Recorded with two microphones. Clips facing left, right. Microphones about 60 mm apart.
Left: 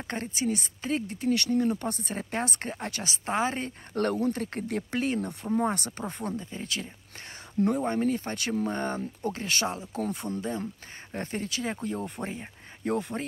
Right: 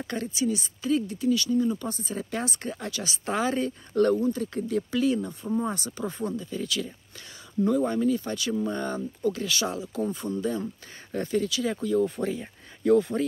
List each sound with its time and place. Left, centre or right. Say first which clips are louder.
0.0 s speech: right 3 dB; left
1.3 s speech: right 1 dB; left